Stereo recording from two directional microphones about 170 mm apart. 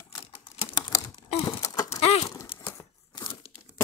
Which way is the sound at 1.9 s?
35° left (ahead or behind).